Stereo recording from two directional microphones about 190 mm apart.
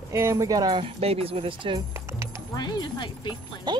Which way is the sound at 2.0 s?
15° right (ahead or behind).